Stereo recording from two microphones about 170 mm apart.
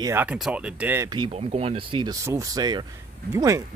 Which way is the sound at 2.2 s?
20° right (ahead or behind).